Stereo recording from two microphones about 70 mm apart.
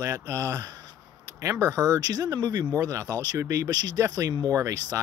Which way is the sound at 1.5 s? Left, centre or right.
Right.